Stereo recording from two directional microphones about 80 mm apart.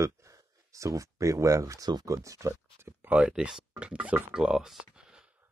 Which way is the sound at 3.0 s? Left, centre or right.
Centre.